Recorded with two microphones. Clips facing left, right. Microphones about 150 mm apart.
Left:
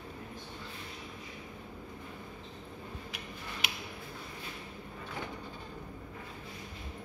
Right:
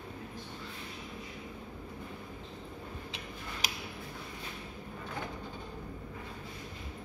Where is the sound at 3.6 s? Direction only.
40° right (ahead or behind).